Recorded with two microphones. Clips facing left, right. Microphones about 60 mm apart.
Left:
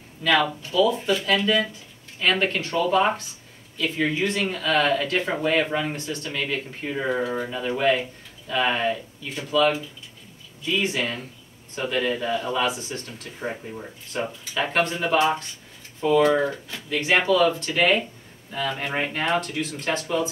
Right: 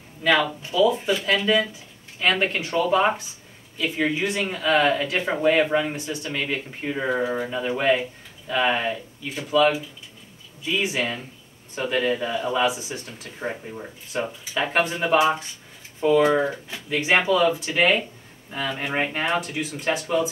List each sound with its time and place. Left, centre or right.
0.2 s speech: centre